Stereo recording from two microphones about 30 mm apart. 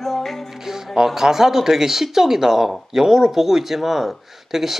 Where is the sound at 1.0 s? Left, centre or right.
Centre.